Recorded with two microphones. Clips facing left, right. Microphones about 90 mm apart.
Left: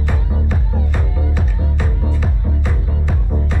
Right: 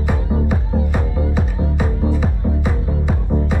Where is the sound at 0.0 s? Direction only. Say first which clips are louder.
Right 4 dB; 10° right (ahead or behind).